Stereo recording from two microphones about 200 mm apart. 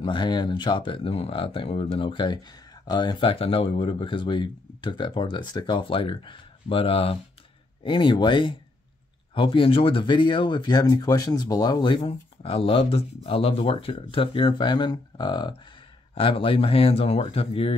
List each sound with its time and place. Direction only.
0.0 s speech: 25° left (ahead or behind)